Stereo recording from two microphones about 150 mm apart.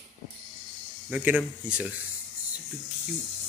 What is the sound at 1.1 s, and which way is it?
Speech, 10° right (ahead or behind).